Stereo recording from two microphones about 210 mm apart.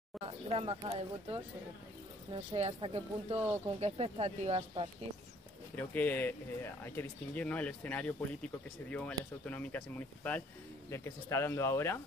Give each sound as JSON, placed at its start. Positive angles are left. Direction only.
{"t": 0.2, "sound": "speech", "side_deg": -25}
{"t": 5.8, "sound": "speech", "side_deg": 10}